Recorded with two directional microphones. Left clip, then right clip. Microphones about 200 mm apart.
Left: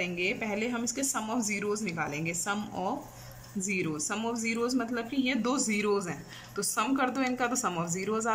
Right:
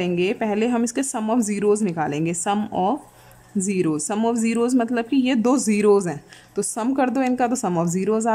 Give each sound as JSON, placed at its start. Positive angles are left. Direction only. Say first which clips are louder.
{"t": 0.0, "sound": "speech", "louder": "right 9 dB", "side_deg": -35}